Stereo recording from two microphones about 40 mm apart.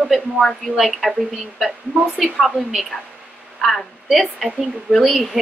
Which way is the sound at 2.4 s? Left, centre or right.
Centre.